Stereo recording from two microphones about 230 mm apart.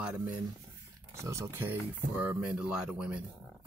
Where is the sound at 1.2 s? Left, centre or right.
Centre.